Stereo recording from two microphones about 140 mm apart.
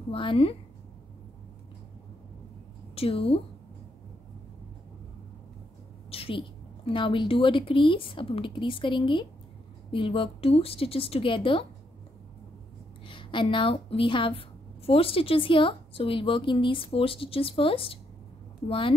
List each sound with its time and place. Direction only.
0.1 s a woman's voice: 40° left (ahead or behind)
2.9 s a woman's voice: 45° left (ahead or behind)
6.0 s a sound: 45° left (ahead or behind)
6.9 s a woman's voice: 35° left (ahead or behind)
13.0 s a woman's voice: 35° left (ahead or behind)